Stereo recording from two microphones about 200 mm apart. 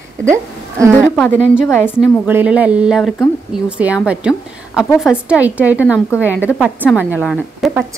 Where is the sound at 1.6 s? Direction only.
10° left (ahead or behind).